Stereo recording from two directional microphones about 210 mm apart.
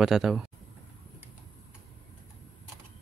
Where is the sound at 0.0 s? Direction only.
Centre (ahead or behind).